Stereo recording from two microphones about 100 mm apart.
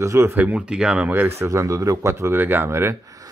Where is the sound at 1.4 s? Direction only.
30° right (ahead or behind).